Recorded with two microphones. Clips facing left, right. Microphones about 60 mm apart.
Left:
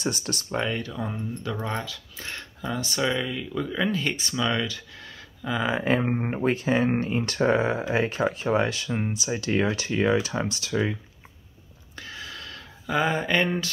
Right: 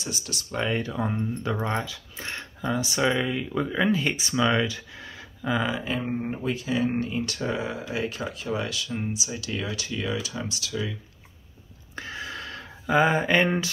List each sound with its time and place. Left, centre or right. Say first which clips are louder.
0.0 s speech: left 5 dB; left
0.7 s speech: right 3 dB; centre
3.7 s speech: right 2 dB; centre
5.8 s speech: left 5 dB; left
11.9 s a sound: right 4 dB; right
12.9 s speech: right 3 dB; centre